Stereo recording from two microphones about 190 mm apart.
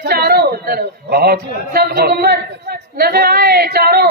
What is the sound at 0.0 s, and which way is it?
A man's voice, 55° right (ahead or behind).